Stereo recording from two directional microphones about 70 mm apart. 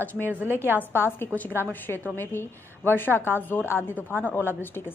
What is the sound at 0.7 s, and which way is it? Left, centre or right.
A woman's voice, left.